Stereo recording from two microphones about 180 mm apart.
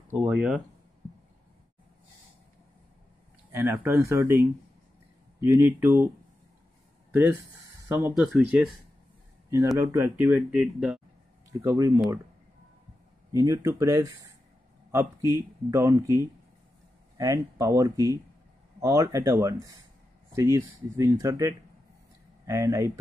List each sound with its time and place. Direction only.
0.1 s speech: 10° right (ahead or behind)
3.5 s speech: 15° right (ahead or behind)
7.9 s speech: 5° right (ahead or behind)
9.8 s speech: 15° right (ahead or behind)
11.6 s speech: 15° right (ahead or behind)
13.3 s speech: 20° right (ahead or behind)
15.3 s speech: 15° right (ahead or behind)